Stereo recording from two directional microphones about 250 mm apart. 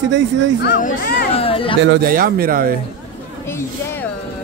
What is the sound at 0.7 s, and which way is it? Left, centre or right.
Speech, left.